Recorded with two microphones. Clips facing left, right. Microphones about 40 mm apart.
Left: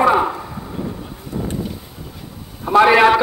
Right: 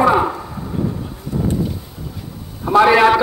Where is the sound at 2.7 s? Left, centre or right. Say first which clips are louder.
Even; left.